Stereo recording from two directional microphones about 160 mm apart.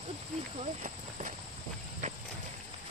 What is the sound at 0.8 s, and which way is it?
Clip-clop, 50° right (ahead or behind).